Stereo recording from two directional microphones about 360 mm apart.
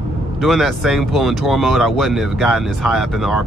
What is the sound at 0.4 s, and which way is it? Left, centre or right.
Speech, centre.